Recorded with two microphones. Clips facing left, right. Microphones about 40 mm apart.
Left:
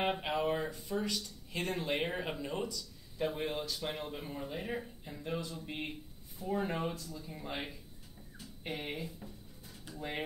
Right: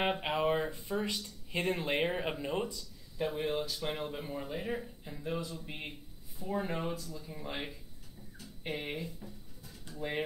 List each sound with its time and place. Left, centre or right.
0.0 s a sound: centre
0.7 s speech: right
3.3 s speech: centre